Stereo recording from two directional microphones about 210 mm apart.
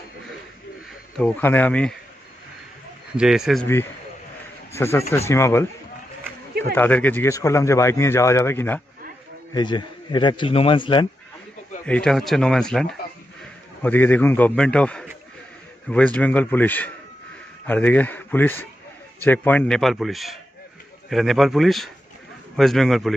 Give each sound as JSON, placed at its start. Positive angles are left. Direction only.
{"t": 1.1, "sound": "speech", "side_deg": 5}
{"t": 3.2, "sound": "a man's voice", "side_deg": 0}
{"t": 4.7, "sound": "speech", "side_deg": 10}
{"t": 9.5, "sound": "speech", "side_deg": 20}
{"t": 11.8, "sound": "a man's voice", "side_deg": 5}